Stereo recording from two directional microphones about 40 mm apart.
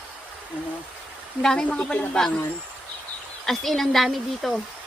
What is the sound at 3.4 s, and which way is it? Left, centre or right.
A woman's voice, centre.